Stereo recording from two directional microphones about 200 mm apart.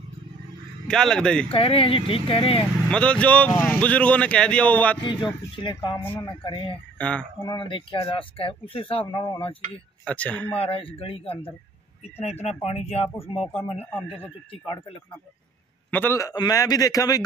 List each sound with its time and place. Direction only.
0.8 s speech: 5° left (ahead or behind)
1.5 s speech: 25° left (ahead or behind)
2.9 s speech: 5° left (ahead or behind)
5.0 s speech: 25° left (ahead or behind)
5.9 s speech: 10° left (ahead or behind)
6.2 s speech: 25° left (ahead or behind)
7.0 s speech: 5° left (ahead or behind)
7.4 s speech: 25° left (ahead or behind)
10.0 s speech: 5° left (ahead or behind)
10.5 s speech: 30° left (ahead or behind)
15.9 s speech: 10° left (ahead or behind)